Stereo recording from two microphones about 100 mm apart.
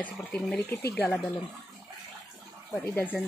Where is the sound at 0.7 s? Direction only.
25° left (ahead or behind).